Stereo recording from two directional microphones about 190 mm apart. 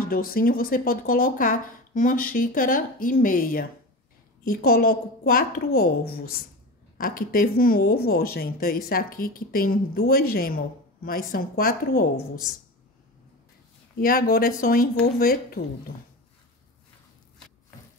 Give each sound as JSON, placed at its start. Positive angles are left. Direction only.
{"t": 0.0, "sound": "speech", "side_deg": 50}
{"t": 13.9, "sound": "speech", "side_deg": 50}